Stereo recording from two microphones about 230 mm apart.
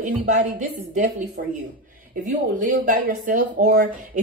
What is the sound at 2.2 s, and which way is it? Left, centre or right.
A woman's voice, right.